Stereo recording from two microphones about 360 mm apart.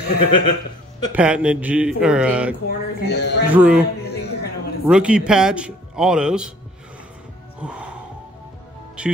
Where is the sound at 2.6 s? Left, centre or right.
Left.